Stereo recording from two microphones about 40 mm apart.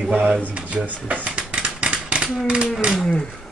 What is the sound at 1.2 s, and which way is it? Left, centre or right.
Scissors, right.